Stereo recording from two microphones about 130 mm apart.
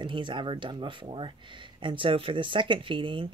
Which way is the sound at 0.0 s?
40° right (ahead or behind).